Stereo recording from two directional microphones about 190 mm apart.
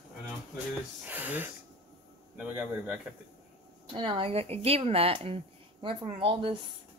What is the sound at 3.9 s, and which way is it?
A woman's voice, 25° right (ahead or behind).